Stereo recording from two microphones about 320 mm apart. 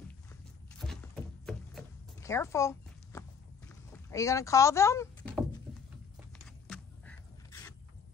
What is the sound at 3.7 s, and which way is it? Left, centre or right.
Rowboat, centre.